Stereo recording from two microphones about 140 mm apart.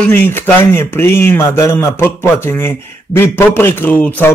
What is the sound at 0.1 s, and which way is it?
A man's voice, 15° left (ahead or behind).